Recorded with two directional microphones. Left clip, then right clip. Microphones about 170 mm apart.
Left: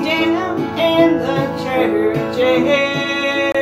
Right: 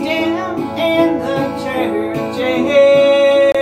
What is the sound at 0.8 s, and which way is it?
Music, 10° left (ahead or behind).